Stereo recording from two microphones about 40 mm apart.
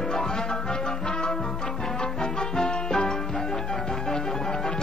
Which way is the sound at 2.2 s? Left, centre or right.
Centre.